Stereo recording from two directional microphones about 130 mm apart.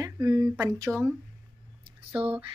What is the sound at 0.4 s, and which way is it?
Speech, 25° right (ahead or behind).